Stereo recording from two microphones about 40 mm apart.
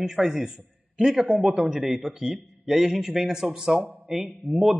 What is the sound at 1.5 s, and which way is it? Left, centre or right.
A man's voice, centre.